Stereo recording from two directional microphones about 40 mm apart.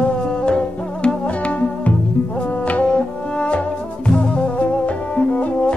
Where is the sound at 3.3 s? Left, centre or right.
Left.